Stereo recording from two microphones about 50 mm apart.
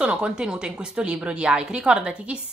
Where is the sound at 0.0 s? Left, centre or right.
Centre.